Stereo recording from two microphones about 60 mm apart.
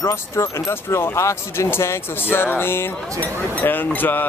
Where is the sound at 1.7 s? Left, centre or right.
Left.